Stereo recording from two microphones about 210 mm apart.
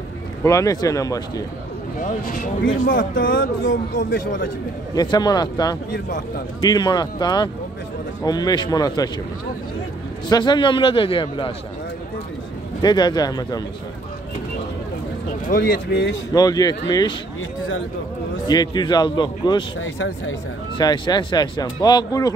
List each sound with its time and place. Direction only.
0.4 s speech: 15° left (ahead or behind)
2.0 s speech: 40° left (ahead or behind)
4.9 s speech: 20° left (ahead or behind)
10.2 s speech: 20° left (ahead or behind)
12.8 s speech: 20° left (ahead or behind)
15.4 s speech: 45° left (ahead or behind)
16.3 s speech: 15° left (ahead or behind)
18.5 s speech: 20° left (ahead or behind)
19.8 s speech: 65° left (ahead or behind)
20.7 s speech: 20° left (ahead or behind)